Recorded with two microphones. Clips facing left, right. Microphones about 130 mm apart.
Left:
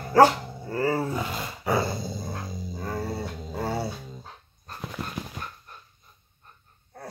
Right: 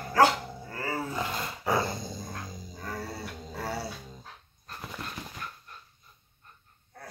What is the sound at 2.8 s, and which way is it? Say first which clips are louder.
Dog: left 6 dB; 30° left (ahead or behind).